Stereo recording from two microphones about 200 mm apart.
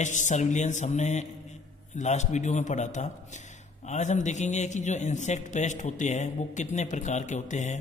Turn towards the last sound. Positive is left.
turn(degrees=35)  # may be behind; listen again after turning